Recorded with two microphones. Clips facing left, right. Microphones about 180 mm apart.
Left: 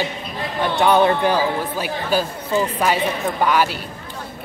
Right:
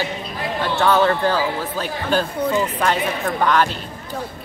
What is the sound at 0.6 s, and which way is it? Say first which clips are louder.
Speech: left 2 dB; 15° left (ahead or behind).